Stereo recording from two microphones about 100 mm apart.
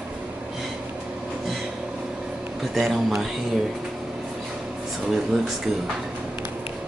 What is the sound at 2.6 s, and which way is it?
Speech, centre (ahead or behind).